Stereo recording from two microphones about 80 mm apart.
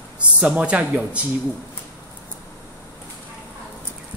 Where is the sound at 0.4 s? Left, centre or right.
Centre.